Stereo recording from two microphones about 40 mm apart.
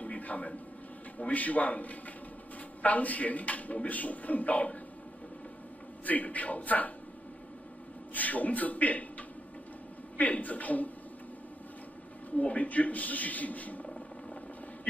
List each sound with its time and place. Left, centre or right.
0.0 s a sound: left
1.1 s a man's voice: left
6.0 s a man's voice: left
8.1 s a man's voice: left
10.1 s a man's voice: left
12.3 s a man's voice: left